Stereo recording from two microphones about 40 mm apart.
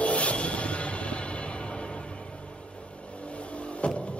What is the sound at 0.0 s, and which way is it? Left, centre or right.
Train, left.